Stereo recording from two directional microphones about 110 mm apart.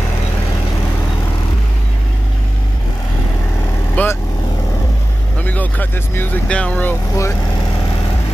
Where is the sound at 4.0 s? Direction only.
15° left (ahead or behind).